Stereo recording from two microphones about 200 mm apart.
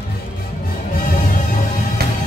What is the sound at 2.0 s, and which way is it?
Music, 50° right (ahead or behind).